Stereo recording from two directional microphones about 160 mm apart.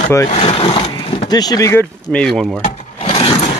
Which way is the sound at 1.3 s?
25° left (ahead or behind).